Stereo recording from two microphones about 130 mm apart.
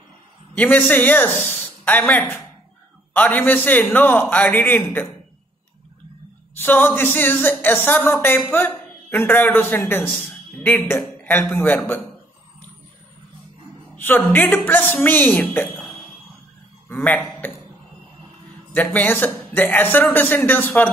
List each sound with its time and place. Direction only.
0.6 s speech: 15° left (ahead or behind)
6.5 s speech: 15° left (ahead or behind)
13.9 s speech: 15° left (ahead or behind)
16.9 s a man's voice: 15° left (ahead or behind)
18.9 s speech: 15° left (ahead or behind)